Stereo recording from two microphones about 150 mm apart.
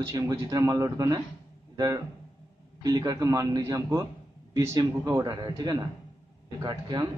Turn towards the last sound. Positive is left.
turn(degrees=-30)  # may be behind; listen again after turning